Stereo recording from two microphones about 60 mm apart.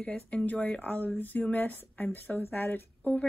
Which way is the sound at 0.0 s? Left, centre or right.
Left.